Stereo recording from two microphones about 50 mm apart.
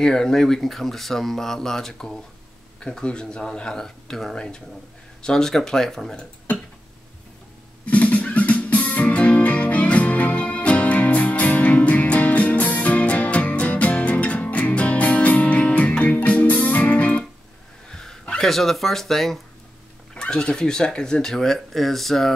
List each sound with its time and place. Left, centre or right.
0.0 s speech: centre
7.8 s music: left
17.8 s a sound: centre
18.4 s speech: centre
20.2 s speech: centre